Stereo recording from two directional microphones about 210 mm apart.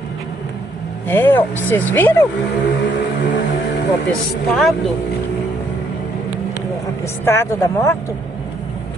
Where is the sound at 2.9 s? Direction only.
55° left (ahead or behind).